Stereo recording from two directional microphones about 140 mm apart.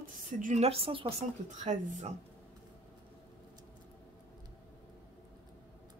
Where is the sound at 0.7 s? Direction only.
40° right (ahead or behind).